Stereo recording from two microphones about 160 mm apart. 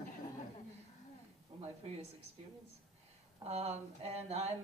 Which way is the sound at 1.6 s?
40° right (ahead or behind).